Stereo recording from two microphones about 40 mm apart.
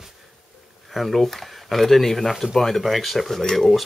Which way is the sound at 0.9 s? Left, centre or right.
Centre.